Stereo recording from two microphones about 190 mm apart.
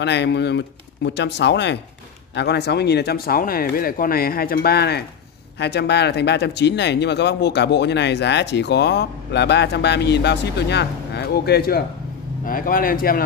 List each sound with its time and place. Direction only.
0.0 s speech: 65° left (ahead or behind); by 13.2 s 50° left (ahead or behind)